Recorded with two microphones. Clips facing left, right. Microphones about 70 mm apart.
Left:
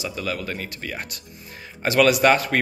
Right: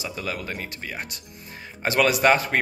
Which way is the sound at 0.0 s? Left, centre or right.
Right.